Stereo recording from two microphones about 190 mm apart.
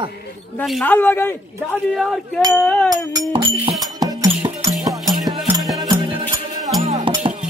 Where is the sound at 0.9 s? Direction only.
10° left (ahead or behind).